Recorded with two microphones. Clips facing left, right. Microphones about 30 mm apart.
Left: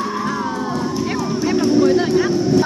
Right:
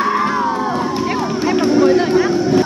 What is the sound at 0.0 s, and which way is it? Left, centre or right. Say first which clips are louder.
Music: right 6 dB; right.